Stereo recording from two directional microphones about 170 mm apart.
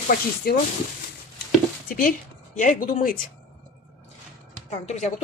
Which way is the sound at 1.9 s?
55° left (ahead or behind).